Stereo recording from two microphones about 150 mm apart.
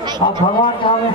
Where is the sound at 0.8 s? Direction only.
35° left (ahead or behind).